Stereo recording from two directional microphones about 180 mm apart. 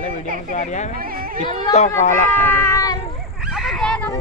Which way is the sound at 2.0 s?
40° left (ahead or behind).